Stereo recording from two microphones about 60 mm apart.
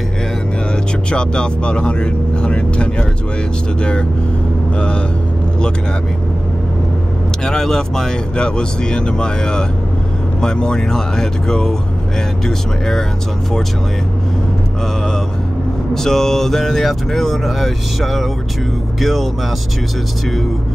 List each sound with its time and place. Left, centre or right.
1.1 s speech: centre
4.7 s speech: centre
7.4 s speech: centre
15.9 s speech: centre